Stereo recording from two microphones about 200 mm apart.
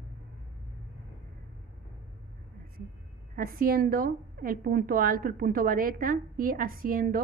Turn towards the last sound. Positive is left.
turn(degrees=-45)  # may be behind; listen again after turning